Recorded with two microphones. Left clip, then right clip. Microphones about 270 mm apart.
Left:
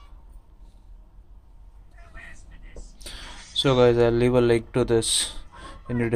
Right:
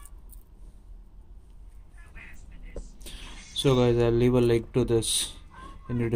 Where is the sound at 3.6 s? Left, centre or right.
Centre.